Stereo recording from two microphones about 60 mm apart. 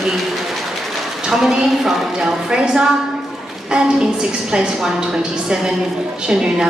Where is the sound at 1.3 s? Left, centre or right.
Centre.